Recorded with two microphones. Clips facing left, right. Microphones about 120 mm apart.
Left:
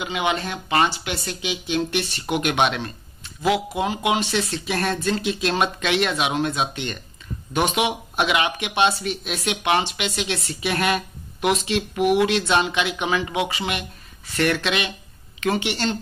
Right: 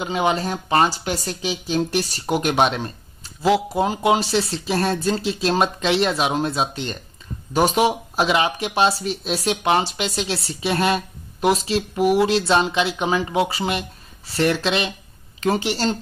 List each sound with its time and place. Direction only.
0.0 s speech: 35° right (ahead or behind)